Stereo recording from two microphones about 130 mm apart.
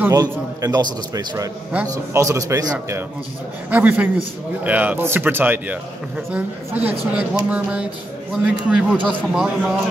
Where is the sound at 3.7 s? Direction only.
10° right (ahead or behind).